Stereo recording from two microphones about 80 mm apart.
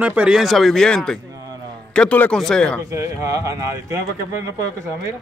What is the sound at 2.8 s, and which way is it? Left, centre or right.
Speech, right.